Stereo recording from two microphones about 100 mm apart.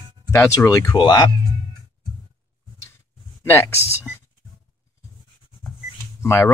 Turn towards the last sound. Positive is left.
turn(degrees=30)  # may be behind; listen again after turning